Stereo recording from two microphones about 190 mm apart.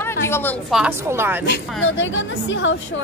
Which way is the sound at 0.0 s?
10° left (ahead or behind).